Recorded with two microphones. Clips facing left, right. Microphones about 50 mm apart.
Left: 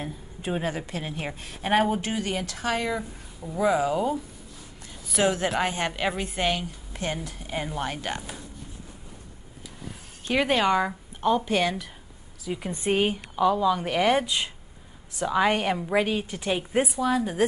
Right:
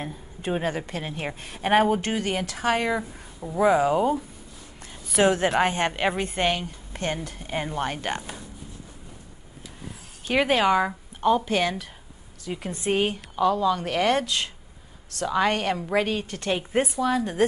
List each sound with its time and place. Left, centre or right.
0.5 s a woman's voice: centre
6.2 s a woman's voice: centre
10.2 s a woman's voice: centre